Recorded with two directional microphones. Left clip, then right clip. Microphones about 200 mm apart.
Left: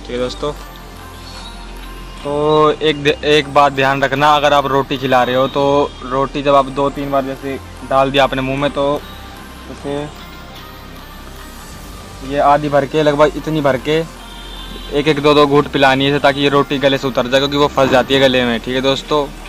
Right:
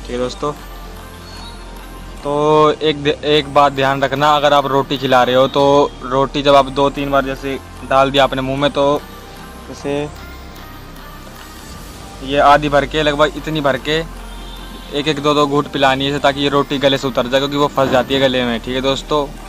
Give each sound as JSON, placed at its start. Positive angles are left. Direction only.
{"t": 0.1, "sound": "speech", "side_deg": -10}
{"t": 2.2, "sound": "speech", "side_deg": -5}
{"t": 12.3, "sound": "speech", "side_deg": -15}
{"t": 12.5, "sound": "speech", "side_deg": -5}
{"t": 12.8, "sound": "speech", "side_deg": 15}
{"t": 15.0, "sound": "speech", "side_deg": 20}